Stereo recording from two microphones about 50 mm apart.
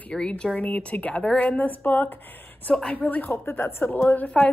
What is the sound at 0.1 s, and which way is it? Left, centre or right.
Speech, centre.